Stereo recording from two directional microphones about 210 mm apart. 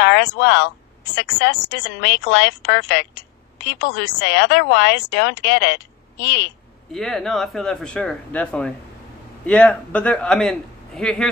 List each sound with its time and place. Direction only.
0.0 s speech: 55° left (ahead or behind)
6.9 s speech: centre (ahead or behind)